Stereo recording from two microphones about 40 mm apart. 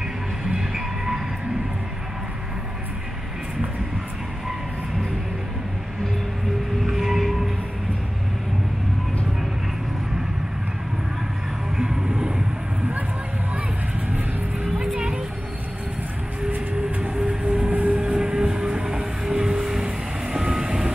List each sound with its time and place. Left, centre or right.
0.5 s music: centre
6.9 s train: centre
11.7 s vehicle: centre
14.6 s music: right
17.1 s a sound: right
17.9 s vehicle: centre